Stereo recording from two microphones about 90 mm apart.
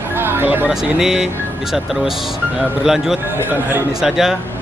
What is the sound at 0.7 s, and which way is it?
Speech, 5° right (ahead or behind).